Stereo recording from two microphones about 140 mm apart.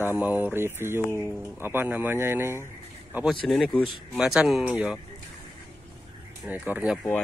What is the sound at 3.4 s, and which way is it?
Speech, 5° left (ahead or behind).